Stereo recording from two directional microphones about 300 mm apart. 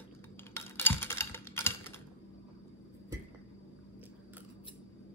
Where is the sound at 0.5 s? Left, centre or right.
Centre.